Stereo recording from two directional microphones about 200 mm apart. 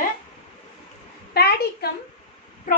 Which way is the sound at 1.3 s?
50° left (ahead or behind).